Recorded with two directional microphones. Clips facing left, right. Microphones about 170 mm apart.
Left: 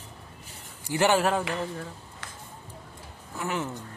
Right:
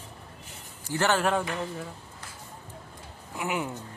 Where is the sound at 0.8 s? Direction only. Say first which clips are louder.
Left 2 dB; 15° left (ahead or behind).